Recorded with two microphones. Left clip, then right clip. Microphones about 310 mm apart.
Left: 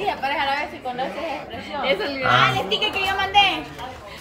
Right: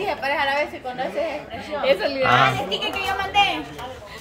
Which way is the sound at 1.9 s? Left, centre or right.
Right.